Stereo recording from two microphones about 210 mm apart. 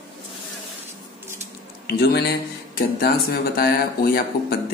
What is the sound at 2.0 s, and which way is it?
Speech, 50° left (ahead or behind).